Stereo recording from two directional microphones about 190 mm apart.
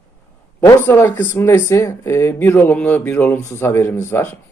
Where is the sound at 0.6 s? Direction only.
10° left (ahead or behind).